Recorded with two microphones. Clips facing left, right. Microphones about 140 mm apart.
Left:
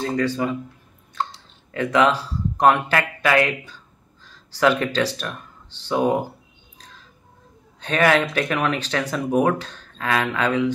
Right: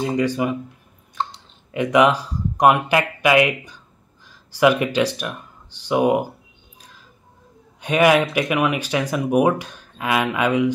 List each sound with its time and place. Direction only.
0.0 s speech: 15° right (ahead or behind)
1.2 s a sound: 15° right (ahead or behind)
1.7 s speech: 15° right (ahead or behind)
7.8 s speech: 15° right (ahead or behind)